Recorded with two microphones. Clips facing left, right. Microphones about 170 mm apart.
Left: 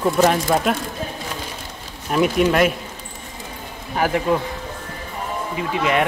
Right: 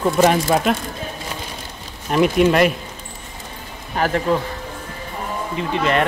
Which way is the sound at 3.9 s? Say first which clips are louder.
Even; 10° left (ahead or behind).